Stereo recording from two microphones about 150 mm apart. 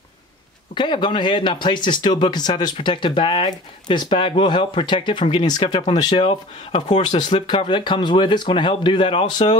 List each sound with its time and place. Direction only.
0.7 s speech: 30° left (ahead or behind)